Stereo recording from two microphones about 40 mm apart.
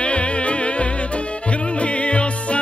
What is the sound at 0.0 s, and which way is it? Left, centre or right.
Music, left.